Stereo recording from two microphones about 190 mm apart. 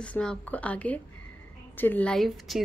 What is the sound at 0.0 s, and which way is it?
A woman's voice, 5° left (ahead or behind).